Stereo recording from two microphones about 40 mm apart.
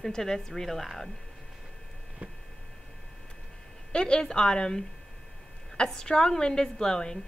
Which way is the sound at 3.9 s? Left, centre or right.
Left.